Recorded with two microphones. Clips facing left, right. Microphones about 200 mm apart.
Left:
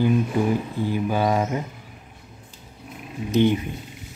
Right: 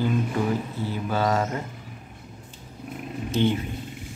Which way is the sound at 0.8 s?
15° left (ahead or behind).